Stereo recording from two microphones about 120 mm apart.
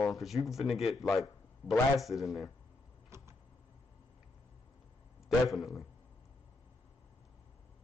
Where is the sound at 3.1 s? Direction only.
20° right (ahead or behind).